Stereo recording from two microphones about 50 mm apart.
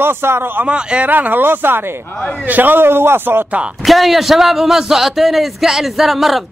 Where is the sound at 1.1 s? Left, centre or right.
Right.